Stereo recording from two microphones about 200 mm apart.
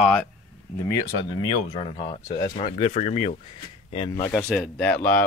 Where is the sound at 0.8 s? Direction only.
15° left (ahead or behind); by 3.3 s 35° left (ahead or behind).